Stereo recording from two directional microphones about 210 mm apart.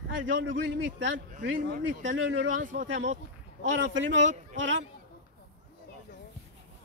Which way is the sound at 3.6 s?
60° right (ahead or behind).